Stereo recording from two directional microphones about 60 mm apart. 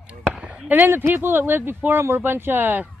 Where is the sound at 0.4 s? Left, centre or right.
Right.